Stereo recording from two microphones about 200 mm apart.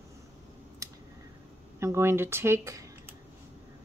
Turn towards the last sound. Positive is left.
turn(degrees=-15)  # may be behind; listen again after turning